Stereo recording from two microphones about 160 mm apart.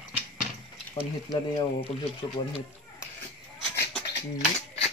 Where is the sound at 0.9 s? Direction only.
35° left (ahead or behind).